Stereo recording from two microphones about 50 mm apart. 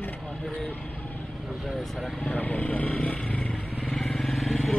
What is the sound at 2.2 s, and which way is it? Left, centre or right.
Speech, left.